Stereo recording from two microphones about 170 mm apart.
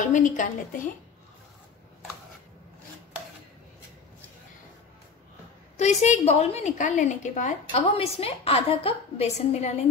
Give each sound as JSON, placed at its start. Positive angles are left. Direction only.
{"t": 0.1, "sound": "a woman's voice", "side_deg": 45}
{"t": 5.8, "sound": "a woman's voice", "side_deg": 40}